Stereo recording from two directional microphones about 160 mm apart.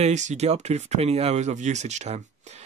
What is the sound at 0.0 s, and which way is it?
Speech, 45° right (ahead or behind).